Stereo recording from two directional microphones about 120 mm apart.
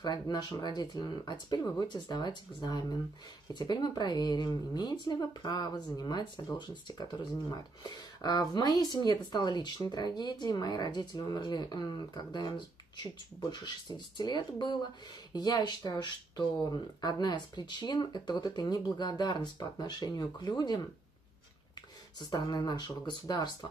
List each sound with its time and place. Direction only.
0.0 s speech: 35° left (ahead or behind)
22.2 s speech: 35° left (ahead or behind)